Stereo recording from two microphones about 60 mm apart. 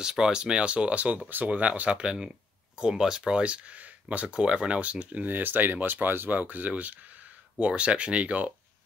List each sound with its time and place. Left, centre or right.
0.0 s speech: centre
4.3 s speech: centre